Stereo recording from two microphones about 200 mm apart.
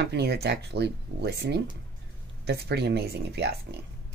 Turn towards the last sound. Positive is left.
turn(degrees=-55)  # may be behind; listen again after turning